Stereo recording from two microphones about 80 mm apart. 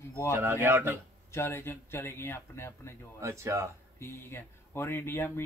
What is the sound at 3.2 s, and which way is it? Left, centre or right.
Speech, right.